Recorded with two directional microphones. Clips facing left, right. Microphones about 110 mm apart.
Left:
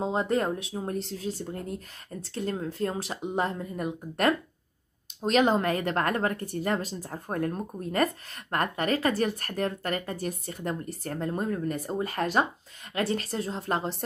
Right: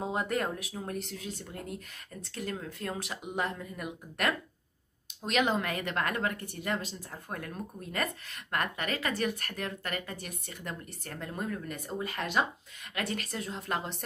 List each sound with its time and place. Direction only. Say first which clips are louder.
0.0 s speech: left 5 dB; 30° left (ahead or behind)